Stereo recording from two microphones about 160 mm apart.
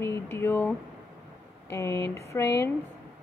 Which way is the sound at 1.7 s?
15° left (ahead or behind).